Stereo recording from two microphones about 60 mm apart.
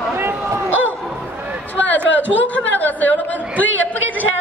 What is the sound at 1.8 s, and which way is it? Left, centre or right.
Chatter, left.